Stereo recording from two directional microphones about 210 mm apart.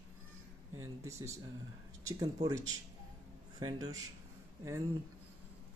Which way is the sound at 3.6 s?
20° right (ahead or behind).